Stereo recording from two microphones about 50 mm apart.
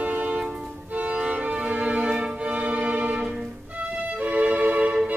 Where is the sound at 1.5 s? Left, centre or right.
Centre.